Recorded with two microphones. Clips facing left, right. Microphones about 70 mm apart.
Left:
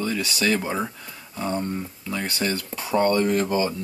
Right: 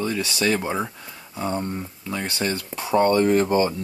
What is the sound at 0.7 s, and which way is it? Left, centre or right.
Speech, centre.